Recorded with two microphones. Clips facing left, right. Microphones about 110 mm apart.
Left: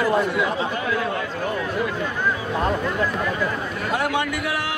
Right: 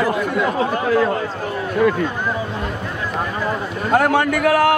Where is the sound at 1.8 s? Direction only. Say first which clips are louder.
Right 13 dB; 60° right (ahead or behind).